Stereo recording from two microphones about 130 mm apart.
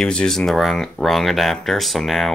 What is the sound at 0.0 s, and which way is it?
Speech, 5° left (ahead or behind).